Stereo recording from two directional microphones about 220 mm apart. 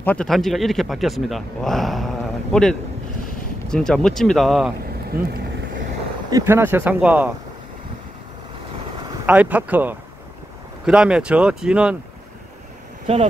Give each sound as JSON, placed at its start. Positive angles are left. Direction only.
{"t": 0.0, "sound": "speech", "side_deg": 5}
{"t": 5.1, "sound": "speech", "side_deg": -40}
{"t": 6.3, "sound": "speech", "side_deg": -10}
{"t": 9.2, "sound": "speech", "side_deg": -5}
{"t": 13.0, "sound": "speech", "side_deg": -30}